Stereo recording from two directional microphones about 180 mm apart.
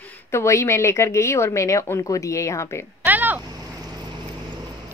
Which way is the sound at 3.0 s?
10° right (ahead or behind).